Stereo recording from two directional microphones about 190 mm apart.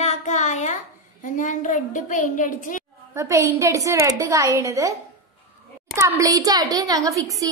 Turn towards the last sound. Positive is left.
turn(degrees=-15)  # may be behind; listen again after turning